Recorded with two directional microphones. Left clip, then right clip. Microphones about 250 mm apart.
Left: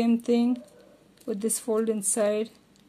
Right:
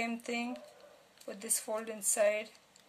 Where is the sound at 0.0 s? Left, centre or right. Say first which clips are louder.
Left 12 dB; centre.